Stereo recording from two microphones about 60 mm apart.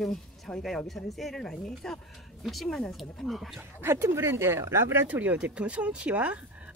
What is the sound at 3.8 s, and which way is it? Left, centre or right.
Speech, right.